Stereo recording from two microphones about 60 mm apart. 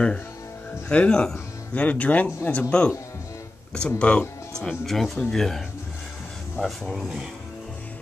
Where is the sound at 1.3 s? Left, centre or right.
Left.